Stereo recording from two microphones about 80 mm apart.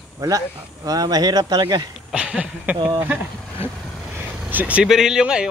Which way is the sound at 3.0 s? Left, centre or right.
Right.